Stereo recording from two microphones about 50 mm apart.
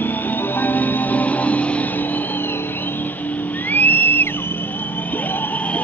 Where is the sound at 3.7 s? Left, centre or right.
Left.